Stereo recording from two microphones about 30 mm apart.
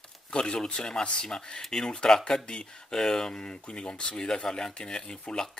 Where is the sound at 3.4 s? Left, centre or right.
Left.